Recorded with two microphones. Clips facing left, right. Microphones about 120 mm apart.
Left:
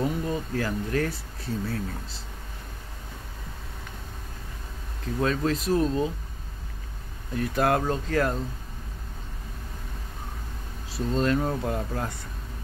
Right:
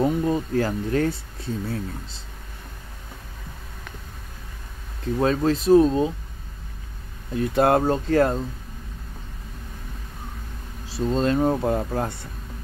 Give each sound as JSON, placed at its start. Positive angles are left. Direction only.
{"t": 0.0, "sound": "speech", "side_deg": -30}
{"t": 5.2, "sound": "speech", "side_deg": -30}
{"t": 7.3, "sound": "speech", "side_deg": -25}
{"t": 10.9, "sound": "speech", "side_deg": -25}